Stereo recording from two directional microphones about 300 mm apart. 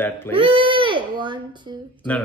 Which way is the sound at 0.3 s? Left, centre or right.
Centre.